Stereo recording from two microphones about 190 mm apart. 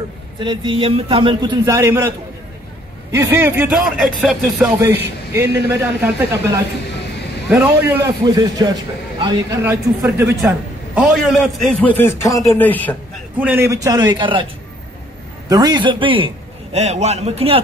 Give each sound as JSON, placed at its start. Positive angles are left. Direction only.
{"t": 0.4, "sound": "a man's voice", "side_deg": -25}
{"t": 8.4, "sound": "a man's voice", "side_deg": -20}
{"t": 11.0, "sound": "a man's voice", "side_deg": 0}
{"t": 12.0, "sound": "speech", "side_deg": 15}
{"t": 13.7, "sound": "a man's voice", "side_deg": -20}
{"t": 15.4, "sound": "a man's voice", "side_deg": -20}